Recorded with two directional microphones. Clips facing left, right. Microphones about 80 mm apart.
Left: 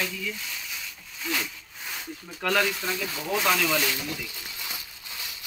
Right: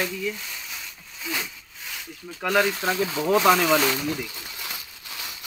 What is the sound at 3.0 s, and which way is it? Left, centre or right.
Speech, right.